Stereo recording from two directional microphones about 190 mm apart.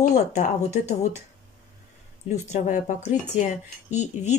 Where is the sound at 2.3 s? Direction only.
40° left (ahead or behind).